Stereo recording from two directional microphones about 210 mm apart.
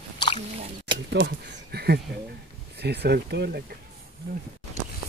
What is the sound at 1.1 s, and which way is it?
Speech, 50° right (ahead or behind).